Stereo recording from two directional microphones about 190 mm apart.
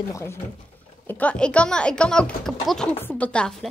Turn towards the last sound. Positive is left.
turn(degrees=5)  # may be behind; listen again after turning